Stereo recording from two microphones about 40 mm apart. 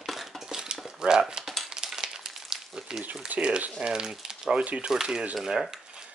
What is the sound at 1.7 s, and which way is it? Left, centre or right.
Frying, centre.